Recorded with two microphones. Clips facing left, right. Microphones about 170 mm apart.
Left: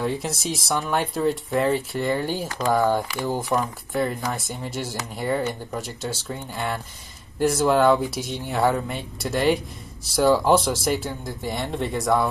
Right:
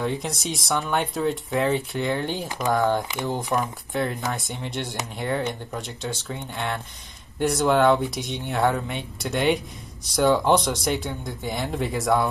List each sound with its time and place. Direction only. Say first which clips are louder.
0.0 s speech: left 1 dB; centre (ahead or behind)
2.4 s speech: left 1 dB; 20° right (ahead or behind)
2.7 s speech: left 1 dB; centre (ahead or behind)